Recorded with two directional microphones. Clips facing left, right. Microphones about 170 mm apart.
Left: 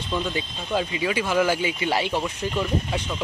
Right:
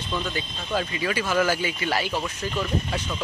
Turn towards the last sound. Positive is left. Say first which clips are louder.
# left 2 dB
turn(degrees=20)  # may be behind; listen again after turning